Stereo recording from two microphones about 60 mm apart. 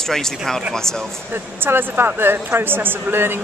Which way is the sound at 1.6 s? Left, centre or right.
Right.